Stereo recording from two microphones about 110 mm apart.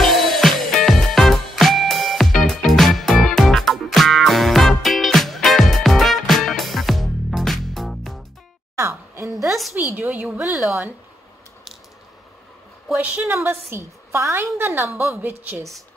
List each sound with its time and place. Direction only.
0.0 s music: centre (ahead or behind)
8.7 s a sound: 25° right (ahead or behind)
9.3 s a sound: centre (ahead or behind)
9.9 s speech: 15° right (ahead or behind)
12.8 s a woman's voice: 10° right (ahead or behind)
15.5 s a woman's voice: centre (ahead or behind)